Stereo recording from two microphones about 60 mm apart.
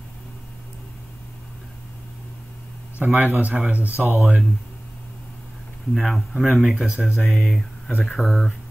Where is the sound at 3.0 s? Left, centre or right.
Right.